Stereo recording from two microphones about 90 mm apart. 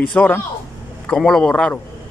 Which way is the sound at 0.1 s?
15° left (ahead or behind).